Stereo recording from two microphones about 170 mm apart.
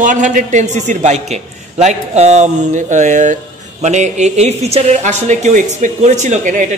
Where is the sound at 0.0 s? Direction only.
50° right (ahead or behind).